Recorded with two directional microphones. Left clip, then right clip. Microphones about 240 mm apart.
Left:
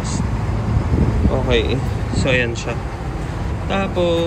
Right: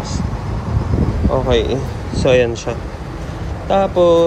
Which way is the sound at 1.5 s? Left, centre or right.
Centre.